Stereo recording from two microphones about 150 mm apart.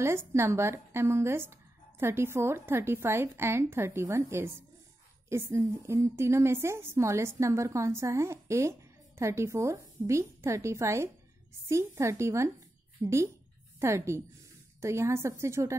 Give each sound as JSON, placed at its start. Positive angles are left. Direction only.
{"t": 0.0, "sound": "a woman's voice", "side_deg": -15}